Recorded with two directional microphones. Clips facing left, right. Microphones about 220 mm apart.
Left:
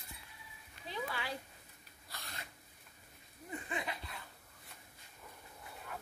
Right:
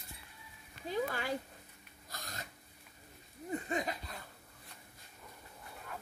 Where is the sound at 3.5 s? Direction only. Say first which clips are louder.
Right 6 dB; 40° right (ahead or behind).